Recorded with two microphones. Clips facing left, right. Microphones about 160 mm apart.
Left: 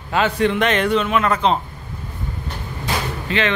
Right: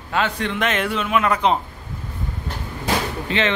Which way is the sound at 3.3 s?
25° right (ahead or behind).